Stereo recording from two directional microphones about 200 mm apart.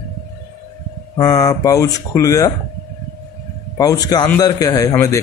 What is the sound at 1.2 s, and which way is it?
A man's voice, 15° left (ahead or behind).